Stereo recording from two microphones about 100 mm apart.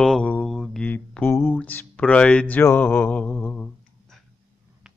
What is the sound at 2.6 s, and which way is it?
Mantra, 20° left (ahead or behind).